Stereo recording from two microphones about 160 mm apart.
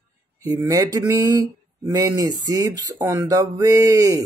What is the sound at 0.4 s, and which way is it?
Speech, 20° right (ahead or behind).